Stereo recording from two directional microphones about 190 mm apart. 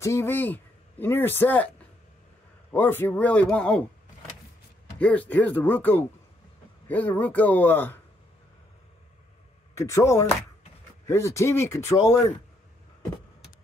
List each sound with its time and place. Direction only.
0.0 s speech: 15° left (ahead or behind)
2.7 s speech: 10° left (ahead or behind)
4.9 s speech: 5° left (ahead or behind)
9.8 s speech: 15° left (ahead or behind)